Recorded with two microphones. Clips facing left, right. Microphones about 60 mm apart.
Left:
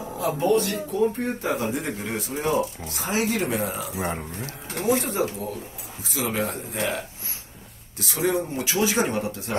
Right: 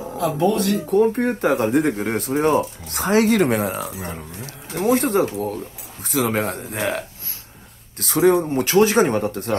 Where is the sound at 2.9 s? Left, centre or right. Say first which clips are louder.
Right 11 dB; right.